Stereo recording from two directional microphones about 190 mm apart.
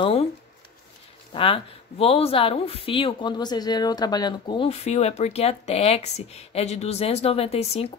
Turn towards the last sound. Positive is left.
turn(degrees=35)  # may be behind; listen again after turning